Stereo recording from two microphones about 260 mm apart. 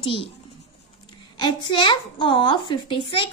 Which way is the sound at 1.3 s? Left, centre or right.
Centre.